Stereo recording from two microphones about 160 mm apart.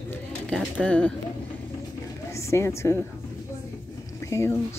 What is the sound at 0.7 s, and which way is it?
Speech, 10° left (ahead or behind).